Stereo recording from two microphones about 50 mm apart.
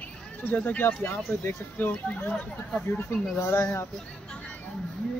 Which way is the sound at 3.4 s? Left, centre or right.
Left.